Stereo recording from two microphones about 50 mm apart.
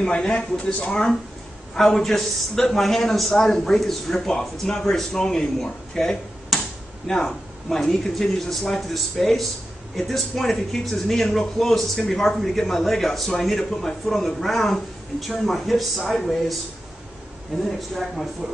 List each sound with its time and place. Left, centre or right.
0.0 s a man's voice: centre
1.8 s a man's voice: centre
6.5 s a sound: centre
7.1 s a man's voice: centre
17.6 s speech: centre